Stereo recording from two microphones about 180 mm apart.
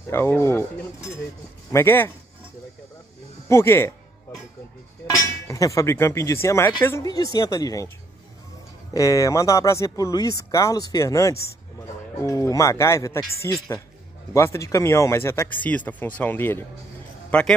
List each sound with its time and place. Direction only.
0.0 s speech: 15° left (ahead or behind)
1.7 s speech: 15° left (ahead or behind)
3.4 s speech: 15° left (ahead or behind)
5.1 s a woman's voice: 20° left (ahead or behind)
8.9 s a man's voice: 20° left (ahead or behind)